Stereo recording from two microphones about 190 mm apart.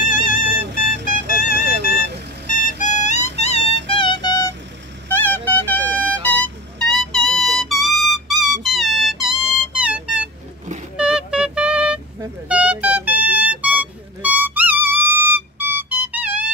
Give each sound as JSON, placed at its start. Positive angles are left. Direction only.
{"t": 0.0, "sound": "music", "side_deg": 45}
{"t": 1.0, "sound": "vehicle", "side_deg": 45}
{"t": 5.1, "sound": "music", "side_deg": 10}